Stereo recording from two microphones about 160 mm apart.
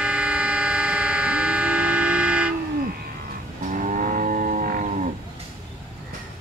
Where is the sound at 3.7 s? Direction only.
55° right (ahead or behind).